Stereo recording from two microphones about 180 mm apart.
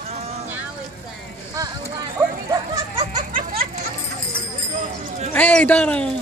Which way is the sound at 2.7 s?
25° right (ahead or behind).